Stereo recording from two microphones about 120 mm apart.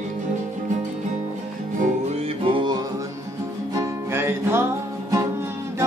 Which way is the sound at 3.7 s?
20° right (ahead or behind).